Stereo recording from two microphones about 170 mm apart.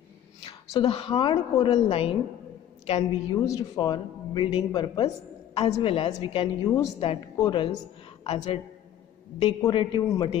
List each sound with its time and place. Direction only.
0.7 s a woman's voice: 35° left (ahead or behind)
3.1 s a woman's voice: 20° left (ahead or behind)
6.6 s a woman's voice: 20° left (ahead or behind); by 8.5 s 35° left (ahead or behind)
9.6 s speech: 25° left (ahead or behind)